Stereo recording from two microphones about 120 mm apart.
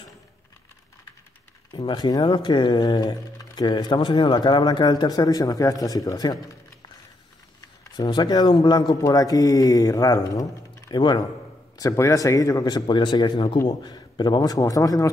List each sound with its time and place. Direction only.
1.7 s speech: 40° left (ahead or behind)
7.9 s speech: 35° left (ahead or behind)
11.8 s speech: 25° left (ahead or behind)